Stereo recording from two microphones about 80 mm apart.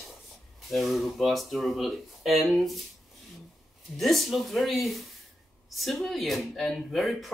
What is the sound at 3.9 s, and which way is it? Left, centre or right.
Speech, centre.